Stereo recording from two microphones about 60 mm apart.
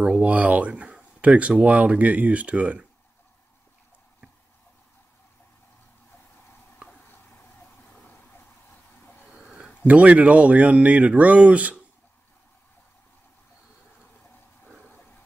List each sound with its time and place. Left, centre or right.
0.2 s speech: right
9.8 s speech: right